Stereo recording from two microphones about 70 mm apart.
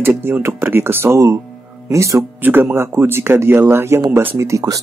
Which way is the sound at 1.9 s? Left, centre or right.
Right.